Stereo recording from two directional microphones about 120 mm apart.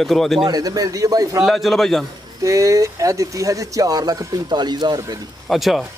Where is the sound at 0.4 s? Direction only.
35° right (ahead or behind).